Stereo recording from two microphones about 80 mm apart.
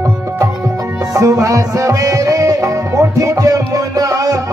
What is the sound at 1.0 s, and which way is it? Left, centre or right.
Music, right.